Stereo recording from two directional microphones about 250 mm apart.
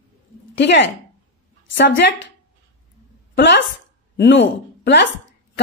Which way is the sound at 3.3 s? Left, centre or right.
Left.